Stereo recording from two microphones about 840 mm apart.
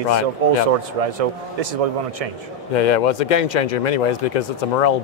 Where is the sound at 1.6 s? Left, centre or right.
Right.